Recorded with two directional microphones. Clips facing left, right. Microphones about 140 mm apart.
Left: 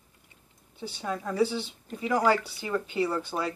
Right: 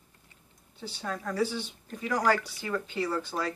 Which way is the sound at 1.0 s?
10° left (ahead or behind).